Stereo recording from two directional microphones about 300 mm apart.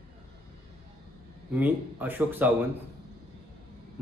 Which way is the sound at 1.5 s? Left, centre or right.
Centre.